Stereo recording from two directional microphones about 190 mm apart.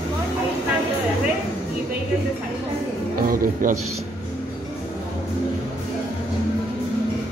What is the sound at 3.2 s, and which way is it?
Music, 50° right (ahead or behind).